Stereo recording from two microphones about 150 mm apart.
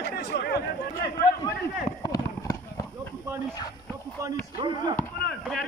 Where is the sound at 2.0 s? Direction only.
25° left (ahead or behind).